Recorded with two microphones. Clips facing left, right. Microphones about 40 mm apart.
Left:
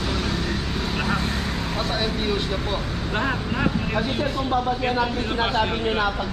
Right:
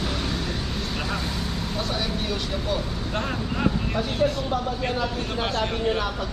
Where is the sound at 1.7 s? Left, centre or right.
Left.